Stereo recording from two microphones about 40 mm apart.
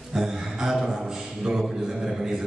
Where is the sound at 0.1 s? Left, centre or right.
Centre.